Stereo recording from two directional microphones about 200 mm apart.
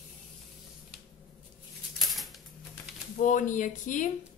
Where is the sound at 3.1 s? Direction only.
40° left (ahead or behind).